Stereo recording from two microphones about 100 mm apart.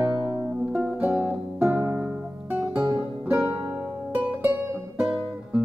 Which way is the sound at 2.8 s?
5° right (ahead or behind).